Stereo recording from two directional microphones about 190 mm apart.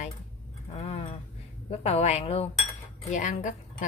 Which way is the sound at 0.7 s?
30° left (ahead or behind).